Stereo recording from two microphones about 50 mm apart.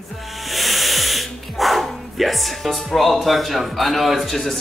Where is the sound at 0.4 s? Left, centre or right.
Centre.